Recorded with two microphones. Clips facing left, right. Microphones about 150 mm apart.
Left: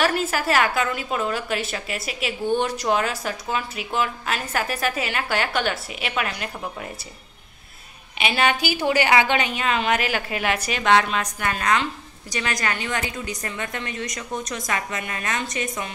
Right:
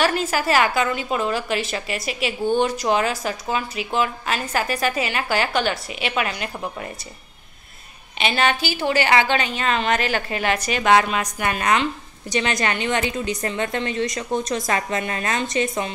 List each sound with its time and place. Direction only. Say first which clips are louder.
0.0 s a woman's voice: right 1 dB; centre (ahead or behind)
8.2 s a woman's voice: right 1 dB; 10° left (ahead or behind); by 15.9 s 30° right (ahead or behind)